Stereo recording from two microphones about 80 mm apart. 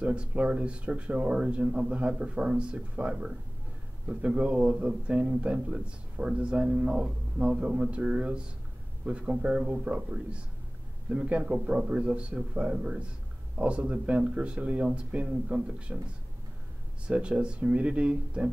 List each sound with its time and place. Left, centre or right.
0.0 s a man's voice: centre
17.1 s a man's voice: centre